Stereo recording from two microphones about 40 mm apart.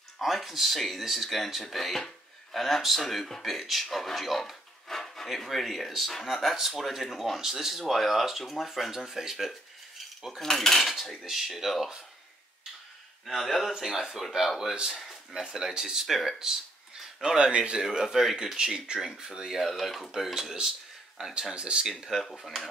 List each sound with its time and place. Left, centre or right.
0.2 s a sound: centre
0.7 s speech: centre
2.0 s a sound: centre
3.0 s cutlery: centre
3.5 s speech: centre
10.4 s cutlery: centre
11.2 s speech: centre
13.2 s speech: centre
13.7 s speech: centre; by 17.7 s right
17.9 s speech: centre
19.5 s speech: centre
20.1 s speech: centre
21.5 s speech: right
22.4 s speech: centre